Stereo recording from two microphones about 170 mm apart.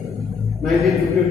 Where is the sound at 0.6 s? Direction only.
Centre (ahead or behind).